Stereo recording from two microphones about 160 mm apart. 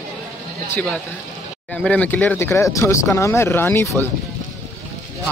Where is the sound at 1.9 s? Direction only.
10° left (ahead or behind).